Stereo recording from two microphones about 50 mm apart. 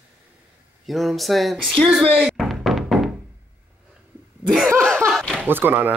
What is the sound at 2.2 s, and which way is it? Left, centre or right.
Music, centre.